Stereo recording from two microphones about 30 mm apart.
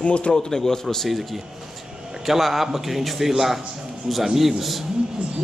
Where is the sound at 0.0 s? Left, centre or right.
Left.